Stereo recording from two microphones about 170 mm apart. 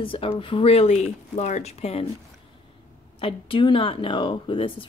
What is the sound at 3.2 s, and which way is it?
Speech, 30° left (ahead or behind).